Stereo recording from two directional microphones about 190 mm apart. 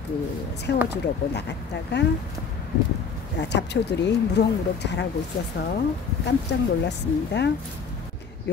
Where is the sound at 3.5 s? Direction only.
65° left (ahead or behind).